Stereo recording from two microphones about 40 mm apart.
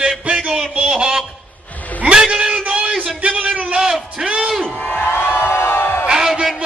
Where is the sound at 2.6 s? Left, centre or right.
Right.